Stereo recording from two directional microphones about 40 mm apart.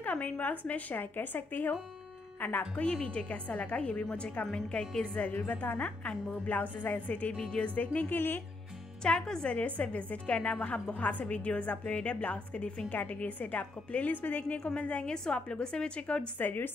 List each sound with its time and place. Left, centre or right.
0.0 s speech: left
2.8 s a woman's voice: left
4.5 s a woman's voice: left
5.5 s a woman's voice: left
7.3 s a woman's voice: left
7.7 s a woman's voice: left
8.1 s speech: left
9.0 s a woman's voice: left
9.6 s a woman's voice: left
14.6 s a woman's voice: left
16.3 s speech: left